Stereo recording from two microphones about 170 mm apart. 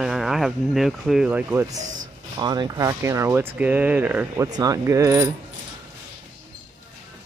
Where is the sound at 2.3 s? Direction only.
25° right (ahead or behind).